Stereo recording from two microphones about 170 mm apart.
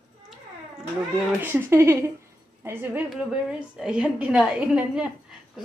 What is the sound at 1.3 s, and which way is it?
A woman's voice, 15° right (ahead or behind).